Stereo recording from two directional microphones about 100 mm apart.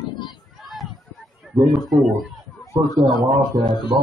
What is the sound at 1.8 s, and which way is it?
Speech, centre (ahead or behind).